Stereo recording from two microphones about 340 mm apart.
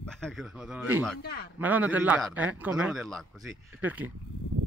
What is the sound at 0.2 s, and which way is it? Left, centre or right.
Speech, centre.